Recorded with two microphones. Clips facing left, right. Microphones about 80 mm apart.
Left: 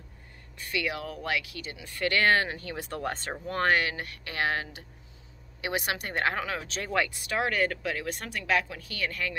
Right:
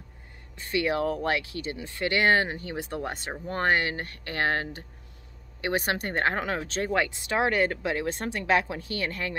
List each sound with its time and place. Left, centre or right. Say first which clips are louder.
0.6 s speech: right 6 dB; right
3.4 s speech: right 1 dB; right